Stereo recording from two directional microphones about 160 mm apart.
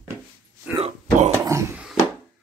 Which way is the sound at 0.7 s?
40° right (ahead or behind).